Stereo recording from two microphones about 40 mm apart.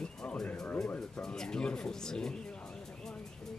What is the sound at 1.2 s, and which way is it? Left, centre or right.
Speech, centre.